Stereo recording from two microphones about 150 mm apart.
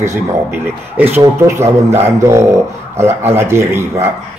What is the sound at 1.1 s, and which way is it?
Speech, 20° right (ahead or behind).